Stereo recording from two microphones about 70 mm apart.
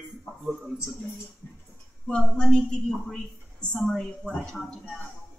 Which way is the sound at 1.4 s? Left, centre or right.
Left.